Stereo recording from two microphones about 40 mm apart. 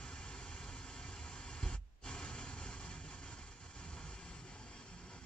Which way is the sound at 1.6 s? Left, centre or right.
Left.